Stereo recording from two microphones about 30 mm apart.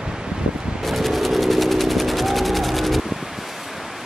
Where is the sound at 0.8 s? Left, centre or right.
Centre.